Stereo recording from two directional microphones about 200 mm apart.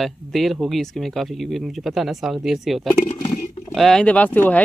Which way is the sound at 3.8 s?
Centre (ahead or behind).